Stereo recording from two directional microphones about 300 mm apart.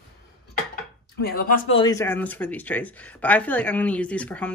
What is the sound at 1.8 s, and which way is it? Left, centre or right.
Speech, centre.